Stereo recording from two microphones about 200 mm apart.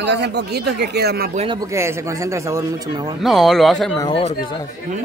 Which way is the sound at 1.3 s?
30° right (ahead or behind).